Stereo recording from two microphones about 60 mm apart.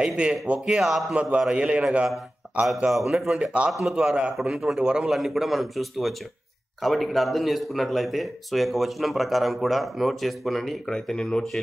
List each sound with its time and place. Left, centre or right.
0.0 s a man's voice: centre
2.9 s speech: centre
3.6 s a man's voice: right
4.4 s speech: centre
5.1 s speech: centre